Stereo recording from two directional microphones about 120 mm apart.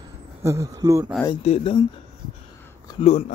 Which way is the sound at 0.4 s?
25° right (ahead or behind).